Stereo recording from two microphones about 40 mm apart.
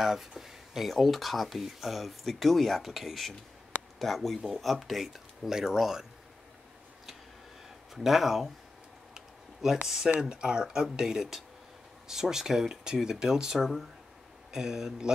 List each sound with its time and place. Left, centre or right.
0.0 s speech: centre
0.4 s a sound: centre
0.8 s speech: centre
5.5 s speech: centre
7.9 s speech: centre
9.1 s a sound: centre
9.8 s speech: centre